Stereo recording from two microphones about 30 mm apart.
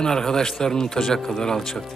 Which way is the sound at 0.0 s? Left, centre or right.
Left.